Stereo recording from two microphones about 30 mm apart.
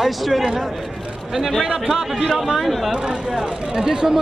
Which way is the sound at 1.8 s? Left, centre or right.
Centre.